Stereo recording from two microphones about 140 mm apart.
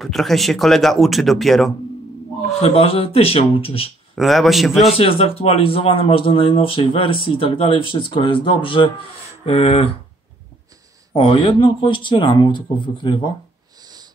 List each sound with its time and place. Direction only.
0.0 s speech: centre (ahead or behind)
2.6 s speech: 45° left (ahead or behind)
4.1 s speech: centre (ahead or behind)
4.8 s speech: 45° left (ahead or behind)
11.1 s speech: 40° left (ahead or behind)